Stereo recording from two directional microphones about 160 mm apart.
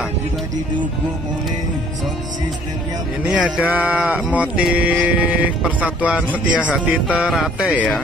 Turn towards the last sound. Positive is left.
turn(degrees=-5)  # may be behind; listen again after turning